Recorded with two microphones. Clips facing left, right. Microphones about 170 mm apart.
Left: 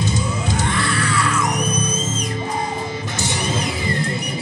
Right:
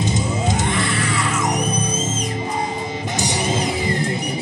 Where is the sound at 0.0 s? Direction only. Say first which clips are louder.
Right 2 dB; 20° right (ahead or behind).